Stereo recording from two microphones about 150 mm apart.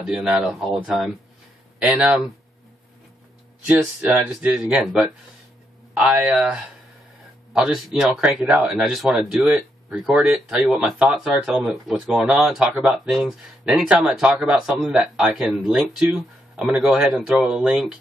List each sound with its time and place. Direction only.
0.0 s speech: 5° right (ahead or behind)
3.6 s speech: 10° right (ahead or behind)